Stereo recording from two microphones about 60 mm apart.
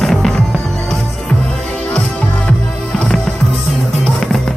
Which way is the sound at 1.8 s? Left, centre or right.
Centre.